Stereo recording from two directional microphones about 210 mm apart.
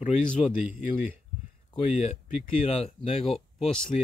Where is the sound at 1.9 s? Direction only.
30° left (ahead or behind).